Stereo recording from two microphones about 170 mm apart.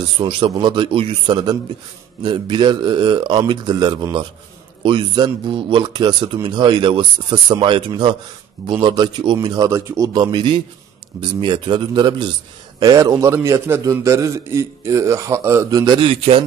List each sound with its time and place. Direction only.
0.2 s a man's voice: 30° right (ahead or behind)